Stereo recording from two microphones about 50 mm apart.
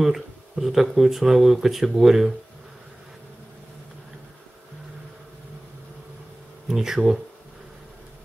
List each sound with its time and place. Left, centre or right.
0.0 s speech: centre
6.7 s speech: centre